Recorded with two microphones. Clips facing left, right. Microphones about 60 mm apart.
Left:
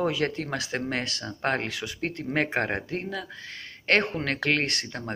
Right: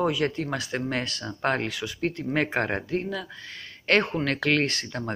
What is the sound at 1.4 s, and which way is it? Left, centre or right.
Speech, left.